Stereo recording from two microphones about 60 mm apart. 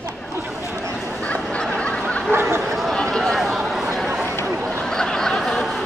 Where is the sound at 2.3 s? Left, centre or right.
Right.